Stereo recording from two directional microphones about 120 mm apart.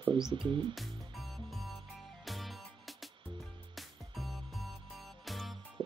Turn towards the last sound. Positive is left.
turn(degrees=-40)  # may be behind; listen again after turning